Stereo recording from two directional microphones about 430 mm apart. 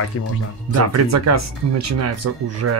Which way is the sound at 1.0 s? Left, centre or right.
Right.